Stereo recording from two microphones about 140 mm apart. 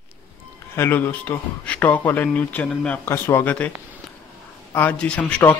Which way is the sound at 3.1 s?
20° left (ahead or behind).